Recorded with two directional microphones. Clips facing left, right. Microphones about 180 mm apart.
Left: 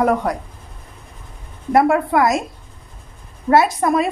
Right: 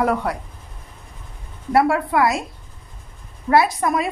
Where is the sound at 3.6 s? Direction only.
25° left (ahead or behind).